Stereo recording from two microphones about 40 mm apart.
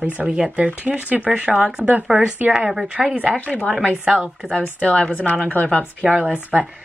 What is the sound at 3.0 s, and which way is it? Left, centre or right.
Speech, centre.